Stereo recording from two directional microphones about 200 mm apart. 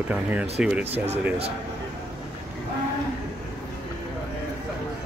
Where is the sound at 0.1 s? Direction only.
5° right (ahead or behind).